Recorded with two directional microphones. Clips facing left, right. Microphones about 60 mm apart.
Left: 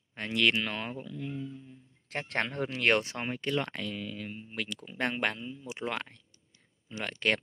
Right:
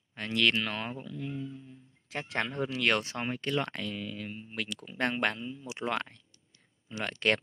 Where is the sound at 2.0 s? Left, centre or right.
Left.